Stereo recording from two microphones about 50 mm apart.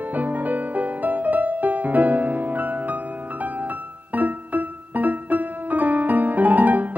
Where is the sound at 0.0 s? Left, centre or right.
Right.